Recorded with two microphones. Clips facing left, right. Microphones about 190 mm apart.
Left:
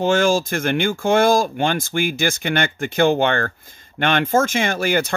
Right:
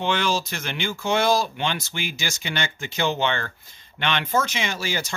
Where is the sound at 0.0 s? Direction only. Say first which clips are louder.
Left 7 dB; 45° left (ahead or behind).